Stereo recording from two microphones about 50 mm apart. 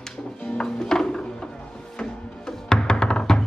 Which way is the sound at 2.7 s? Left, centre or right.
Centre.